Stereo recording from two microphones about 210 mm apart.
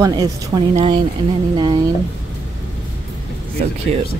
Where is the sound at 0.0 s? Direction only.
20° right (ahead or behind).